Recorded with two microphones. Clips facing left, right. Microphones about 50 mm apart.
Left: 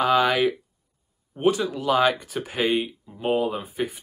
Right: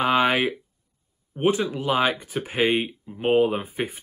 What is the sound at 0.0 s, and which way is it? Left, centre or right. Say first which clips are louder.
Speech: left 1 dB; right.